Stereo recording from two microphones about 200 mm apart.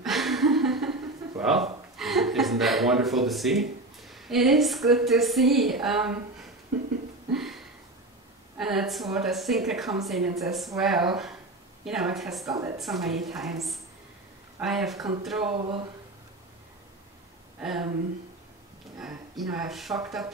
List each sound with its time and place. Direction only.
0.0 s chuckle: centre (ahead or behind)
1.4 s speech: centre (ahead or behind)
7.3 s a sound: centre (ahead or behind)
8.5 s speech: centre (ahead or behind)
12.4 s a woman's voice: 15° right (ahead or behind)
12.8 s speech: centre (ahead or behind)
17.6 s speech: centre (ahead or behind)
18.9 s speech: centre (ahead or behind)